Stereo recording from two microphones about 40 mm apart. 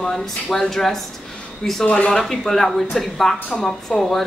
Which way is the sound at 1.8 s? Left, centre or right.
Left.